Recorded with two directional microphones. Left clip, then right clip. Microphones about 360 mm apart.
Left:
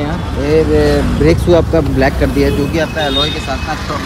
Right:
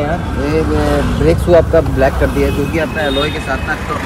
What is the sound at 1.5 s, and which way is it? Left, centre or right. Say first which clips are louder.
Speech: right 2 dB; centre.